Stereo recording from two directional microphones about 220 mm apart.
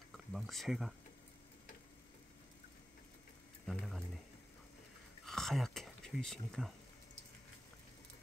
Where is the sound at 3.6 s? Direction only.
Centre (ahead or behind).